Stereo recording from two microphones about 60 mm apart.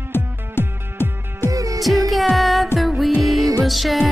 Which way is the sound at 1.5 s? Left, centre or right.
Right.